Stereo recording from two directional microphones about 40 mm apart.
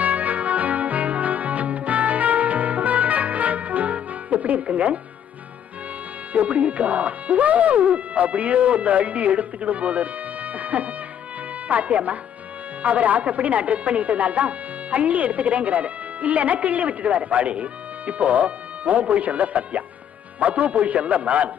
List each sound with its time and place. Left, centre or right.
0.0 s music: right
4.6 s speech: right
6.3 s speech: right